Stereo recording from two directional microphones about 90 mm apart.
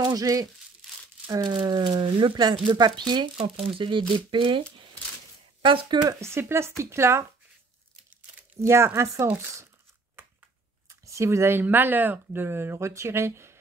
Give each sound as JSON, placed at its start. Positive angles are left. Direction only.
{"t": 0.1, "sound": "speech", "side_deg": -40}
{"t": 1.6, "sound": "speech", "side_deg": -60}
{"t": 6.0, "sound": "speech", "side_deg": -30}
{"t": 8.5, "sound": "speech", "side_deg": -30}
{"t": 10.9, "sound": "speech", "side_deg": -35}